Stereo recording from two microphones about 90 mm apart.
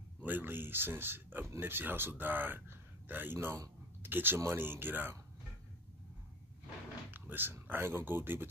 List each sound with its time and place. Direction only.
0.2 s speech: 20° right (ahead or behind)
7.1 s a sound: 20° right (ahead or behind)
7.5 s speech: 25° right (ahead or behind)